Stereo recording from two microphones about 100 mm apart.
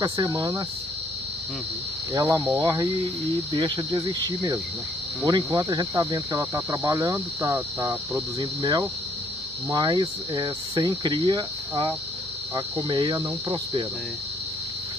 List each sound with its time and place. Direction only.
0.0 s speech: 40° right (ahead or behind)
2.2 s cricket: 20° right (ahead or behind)
2.6 s speech: 40° right (ahead or behind)
3.5 s cricket: 50° right (ahead or behind)
5.2 s speech: 40° right (ahead or behind)
7.5 s cricket: 25° right (ahead or behind)
8.4 s cricket: 45° right (ahead or behind)